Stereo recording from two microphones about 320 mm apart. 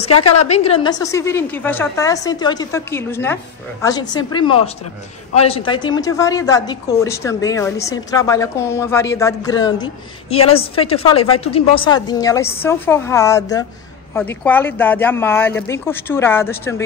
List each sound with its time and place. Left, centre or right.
0.0 s a woman's voice: centre